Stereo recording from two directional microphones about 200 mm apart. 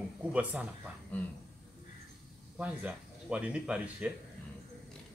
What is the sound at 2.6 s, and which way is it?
Speech, 5° right (ahead or behind).